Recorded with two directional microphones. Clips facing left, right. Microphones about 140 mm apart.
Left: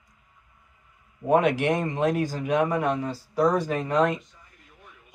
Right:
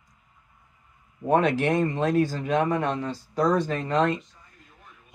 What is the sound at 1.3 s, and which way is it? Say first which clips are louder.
Speech: even; 15° left (ahead or behind).